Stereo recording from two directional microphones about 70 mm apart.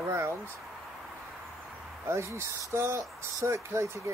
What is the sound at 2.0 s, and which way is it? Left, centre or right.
Speech, right.